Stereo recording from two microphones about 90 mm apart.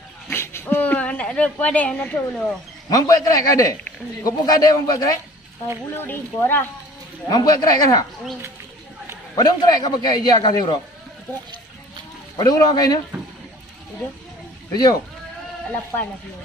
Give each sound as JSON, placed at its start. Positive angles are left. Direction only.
{"t": 0.3, "sound": "a sound", "side_deg": 30}
{"t": 2.9, "sound": "a man's voice", "side_deg": 40}
{"t": 7.2, "sound": "a man's voice", "side_deg": 45}
{"t": 9.3, "sound": "a man's voice", "side_deg": 50}
{"t": 12.4, "sound": "a man's voice", "side_deg": 45}
{"t": 14.7, "sound": "speech", "side_deg": 45}
{"t": 15.7, "sound": "speech", "side_deg": 20}